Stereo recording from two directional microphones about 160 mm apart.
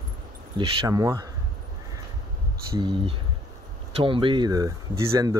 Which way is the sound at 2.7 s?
35° right (ahead or behind).